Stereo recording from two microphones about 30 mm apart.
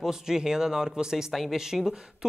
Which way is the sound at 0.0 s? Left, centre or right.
Centre.